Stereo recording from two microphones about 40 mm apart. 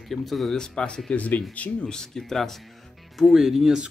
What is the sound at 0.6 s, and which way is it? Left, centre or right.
Speech, centre.